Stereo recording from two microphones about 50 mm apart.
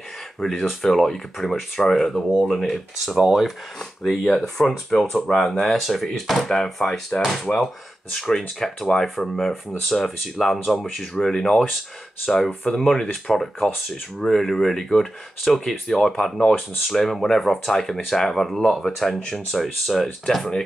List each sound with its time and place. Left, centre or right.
0.4 s speech: centre
3.2 s speech: centre
4.0 s speech: centre
16.3 s speech: centre
16.8 s speech: centre